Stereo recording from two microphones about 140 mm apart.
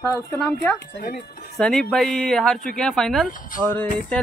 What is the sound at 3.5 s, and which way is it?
Speech, 75° left (ahead or behind).